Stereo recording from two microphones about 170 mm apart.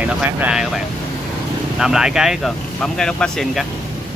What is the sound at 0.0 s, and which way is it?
Speech, 5° right (ahead or behind).